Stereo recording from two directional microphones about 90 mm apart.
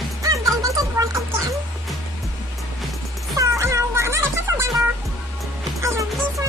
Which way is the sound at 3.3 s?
35° right (ahead or behind).